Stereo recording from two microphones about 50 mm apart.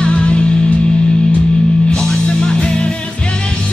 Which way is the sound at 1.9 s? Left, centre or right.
Centre.